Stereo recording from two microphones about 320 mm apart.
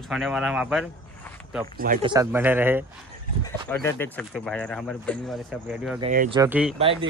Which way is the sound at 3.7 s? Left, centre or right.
Centre.